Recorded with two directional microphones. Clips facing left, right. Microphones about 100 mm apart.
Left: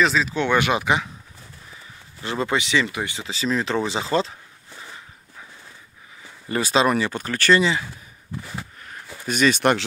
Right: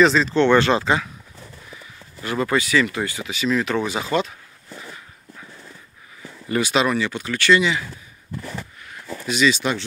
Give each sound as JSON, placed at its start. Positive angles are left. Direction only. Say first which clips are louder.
{"t": 0.0, "sound": "speech", "louder": "right 5 dB", "side_deg": 5}
{"t": 2.2, "sound": "speech", "louder": "right 2 dB", "side_deg": 25}
{"t": 3.2, "sound": "speech", "louder": "right 2 dB", "side_deg": 30}
{"t": 6.5, "sound": "speech", "louder": "even", "side_deg": 30}
{"t": 8.8, "sound": "speech", "louder": "right 2 dB", "side_deg": 50}